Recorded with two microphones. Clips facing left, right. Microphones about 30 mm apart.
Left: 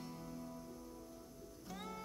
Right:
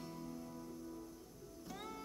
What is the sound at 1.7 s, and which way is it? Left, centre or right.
Music, centre.